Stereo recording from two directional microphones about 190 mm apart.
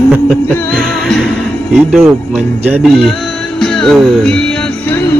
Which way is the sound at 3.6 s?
5° left (ahead or behind).